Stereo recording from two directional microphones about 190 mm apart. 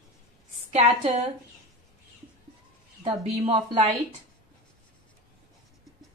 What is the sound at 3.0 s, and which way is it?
Speech, 25° right (ahead or behind).